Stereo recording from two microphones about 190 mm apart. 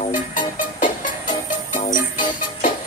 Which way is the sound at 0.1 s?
45° left (ahead or behind).